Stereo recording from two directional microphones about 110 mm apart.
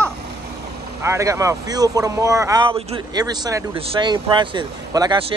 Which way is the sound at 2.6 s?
55° right (ahead or behind).